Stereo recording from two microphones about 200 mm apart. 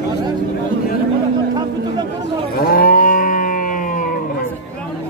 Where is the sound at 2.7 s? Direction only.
45° left (ahead or behind).